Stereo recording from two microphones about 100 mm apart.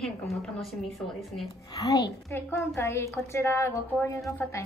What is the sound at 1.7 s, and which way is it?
Speech, 40° left (ahead or behind).